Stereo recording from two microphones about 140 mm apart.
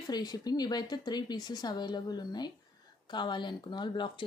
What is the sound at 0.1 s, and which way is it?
Speech, 30° left (ahead or behind).